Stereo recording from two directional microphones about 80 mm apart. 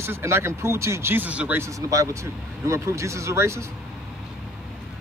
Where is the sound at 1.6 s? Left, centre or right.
Right.